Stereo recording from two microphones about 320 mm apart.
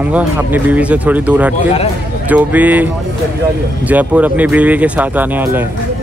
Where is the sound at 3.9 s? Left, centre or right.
Centre.